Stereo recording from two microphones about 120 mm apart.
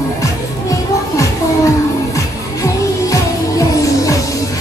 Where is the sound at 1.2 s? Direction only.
25° left (ahead or behind).